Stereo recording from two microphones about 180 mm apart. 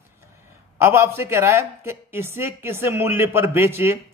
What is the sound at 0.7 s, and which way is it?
Speech, 15° right (ahead or behind).